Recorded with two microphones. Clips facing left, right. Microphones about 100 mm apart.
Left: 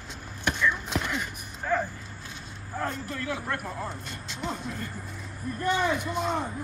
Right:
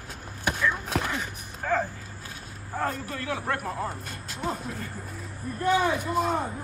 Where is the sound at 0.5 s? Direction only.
45° right (ahead or behind).